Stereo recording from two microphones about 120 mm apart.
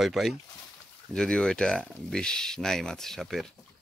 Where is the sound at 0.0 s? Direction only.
Centre (ahead or behind).